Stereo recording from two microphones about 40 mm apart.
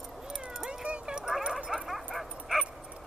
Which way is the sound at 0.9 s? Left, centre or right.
Right.